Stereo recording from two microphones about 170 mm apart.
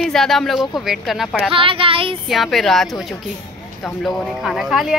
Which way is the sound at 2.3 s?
Centre (ahead or behind).